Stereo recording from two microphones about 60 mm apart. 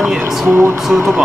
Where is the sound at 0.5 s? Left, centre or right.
Right.